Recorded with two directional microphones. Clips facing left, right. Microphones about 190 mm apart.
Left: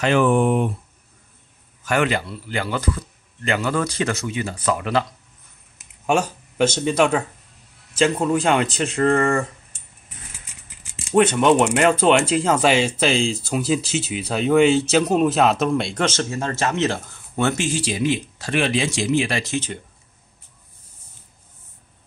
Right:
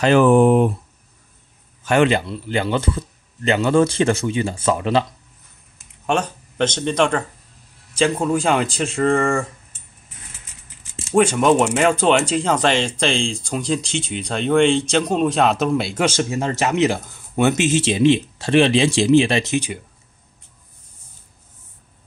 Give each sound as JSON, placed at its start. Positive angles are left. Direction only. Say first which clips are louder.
{"t": 0.0, "sound": "speech", "louder": "right 4 dB", "side_deg": -35}
{"t": 1.9, "sound": "speech", "louder": "right 5 dB", "side_deg": -25}
{"t": 6.0, "sound": "speech", "louder": "left 1 dB", "side_deg": 5}
{"t": 7.9, "sound": "a sound", "louder": "even", "side_deg": 5}
{"t": 8.3, "sound": "speech", "louder": "even", "side_deg": 0}
{"t": 11.1, "sound": "speech", "louder": "even", "side_deg": 0}